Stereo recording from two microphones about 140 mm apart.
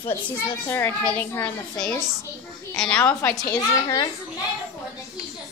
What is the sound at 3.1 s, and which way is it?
Speech, 20° left (ahead or behind).